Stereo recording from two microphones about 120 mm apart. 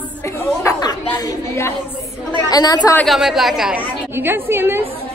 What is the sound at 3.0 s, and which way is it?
Speech, centre (ahead or behind).